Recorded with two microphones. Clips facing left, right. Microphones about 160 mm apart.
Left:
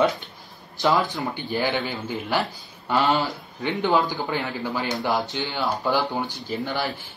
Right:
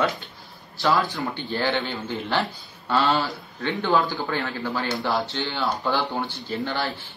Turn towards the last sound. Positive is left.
turn(degrees=15)  # may be behind; listen again after turning